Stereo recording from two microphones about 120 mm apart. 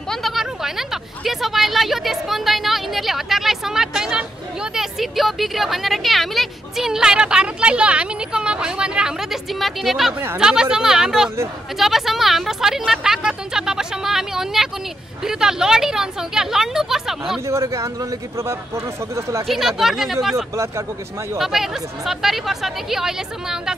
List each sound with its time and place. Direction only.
0.1 s a woman's voice: centre (ahead or behind)
17.5 s a man's voice: 25° right (ahead or behind)
19.4 s a woman's voice: centre (ahead or behind)